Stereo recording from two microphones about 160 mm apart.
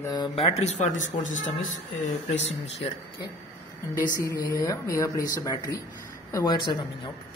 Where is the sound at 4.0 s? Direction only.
20° left (ahead or behind).